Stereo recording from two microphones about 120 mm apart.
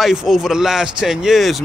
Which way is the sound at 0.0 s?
5° right (ahead or behind).